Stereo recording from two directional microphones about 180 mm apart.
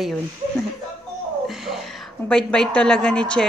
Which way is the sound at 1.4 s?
Centre (ahead or behind).